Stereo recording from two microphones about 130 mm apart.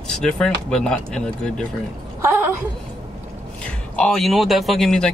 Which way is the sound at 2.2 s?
20° right (ahead or behind).